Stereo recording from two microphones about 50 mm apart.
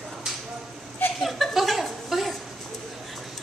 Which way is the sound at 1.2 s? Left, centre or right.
Centre.